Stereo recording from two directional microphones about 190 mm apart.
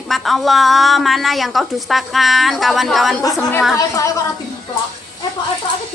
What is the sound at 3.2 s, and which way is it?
Speech, 20° left (ahead or behind).